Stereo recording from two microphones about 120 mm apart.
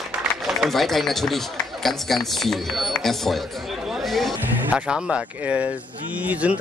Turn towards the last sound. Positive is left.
turn(degrees=-10)  # may be behind; listen again after turning